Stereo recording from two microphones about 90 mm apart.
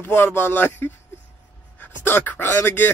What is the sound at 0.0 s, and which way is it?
Speech, 25° left (ahead or behind).